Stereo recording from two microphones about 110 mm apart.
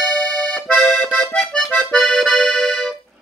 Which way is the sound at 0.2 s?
10° left (ahead or behind).